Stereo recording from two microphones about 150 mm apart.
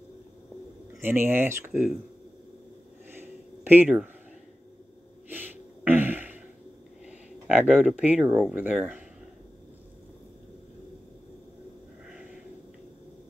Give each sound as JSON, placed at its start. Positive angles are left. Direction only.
{"t": 1.0, "sound": "speech", "side_deg": -15}
{"t": 1.7, "sound": "speech", "side_deg": -5}
{"t": 3.2, "sound": "a sound", "side_deg": -15}
{"t": 3.8, "sound": "speech", "side_deg": -5}
{"t": 5.3, "sound": "a sound", "side_deg": -10}
{"t": 7.1, "sound": "speech", "side_deg": -10}